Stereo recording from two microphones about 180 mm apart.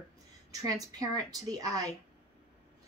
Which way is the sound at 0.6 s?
20° right (ahead or behind).